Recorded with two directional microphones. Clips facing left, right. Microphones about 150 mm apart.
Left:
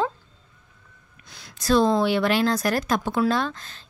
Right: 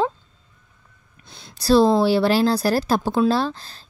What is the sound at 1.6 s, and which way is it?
Speech, 30° right (ahead or behind).